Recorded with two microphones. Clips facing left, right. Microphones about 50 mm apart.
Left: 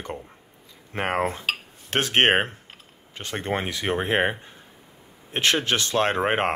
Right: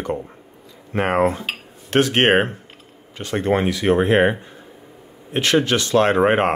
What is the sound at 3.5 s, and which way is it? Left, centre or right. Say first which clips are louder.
Cutlery: right 8 dB; centre.